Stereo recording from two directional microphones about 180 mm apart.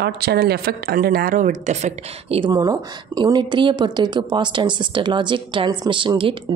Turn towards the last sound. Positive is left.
turn(degrees=-30)  # may be behind; listen again after turning